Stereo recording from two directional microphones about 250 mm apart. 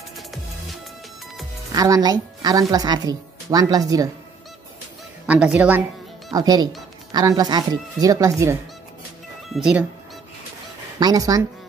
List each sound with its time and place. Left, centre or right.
1.7 s speech: centre
5.2 s a woman's voice: centre
6.3 s speech: centre
11.0 s speech: centre